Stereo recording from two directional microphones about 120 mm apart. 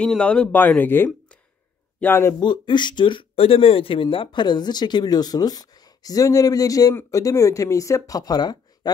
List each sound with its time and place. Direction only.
0.0 s speech: 10° left (ahead or behind)
2.4 s speech: 40° left (ahead or behind)